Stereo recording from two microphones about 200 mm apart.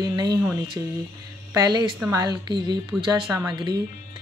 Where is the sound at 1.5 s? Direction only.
20° right (ahead or behind).